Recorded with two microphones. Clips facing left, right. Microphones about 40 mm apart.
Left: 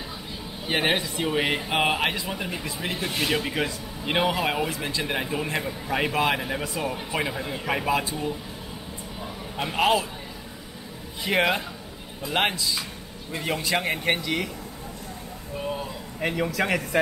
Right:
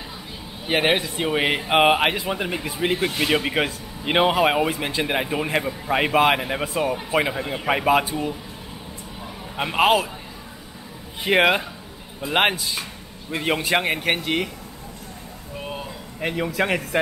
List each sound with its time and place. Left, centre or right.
0.7 s speech: right
9.6 s speech: right
11.2 s speech: right
16.2 s a man's voice: centre
16.4 s speech: right